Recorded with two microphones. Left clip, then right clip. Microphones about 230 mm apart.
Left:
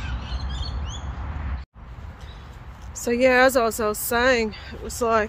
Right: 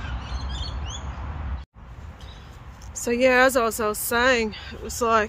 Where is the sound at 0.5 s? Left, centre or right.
Right.